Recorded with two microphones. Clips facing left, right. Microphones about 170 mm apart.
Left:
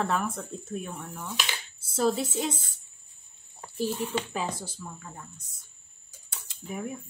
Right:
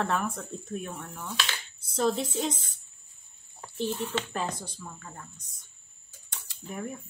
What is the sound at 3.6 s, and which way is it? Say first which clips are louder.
Speech: left 1 dB; 10° left (ahead or behind).